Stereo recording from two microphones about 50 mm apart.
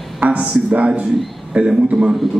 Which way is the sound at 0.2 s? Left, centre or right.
Right.